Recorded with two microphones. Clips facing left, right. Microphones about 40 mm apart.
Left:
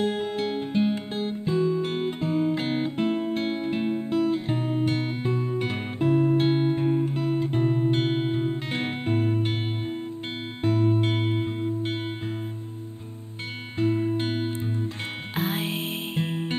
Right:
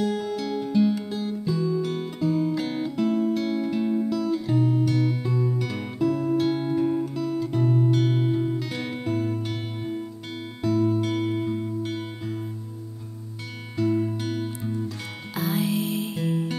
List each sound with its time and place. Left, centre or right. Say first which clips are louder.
0.0 s music: even; left
10.6 s music: right 1 dB; left
13.7 s music: even; left